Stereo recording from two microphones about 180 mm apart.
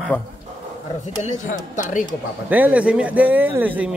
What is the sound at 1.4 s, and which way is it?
Speech, 45° left (ahead or behind).